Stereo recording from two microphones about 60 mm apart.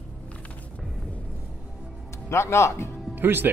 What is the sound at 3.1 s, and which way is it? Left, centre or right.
Speech, right.